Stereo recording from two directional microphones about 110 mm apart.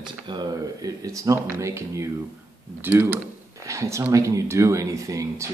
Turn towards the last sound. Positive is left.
turn(degrees=-30)  # may be behind; listen again after turning